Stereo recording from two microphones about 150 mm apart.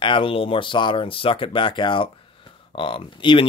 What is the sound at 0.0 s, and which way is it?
Speech, 35° left (ahead or behind).